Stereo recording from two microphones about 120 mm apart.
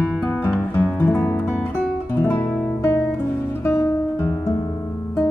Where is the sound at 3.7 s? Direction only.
20° left (ahead or behind).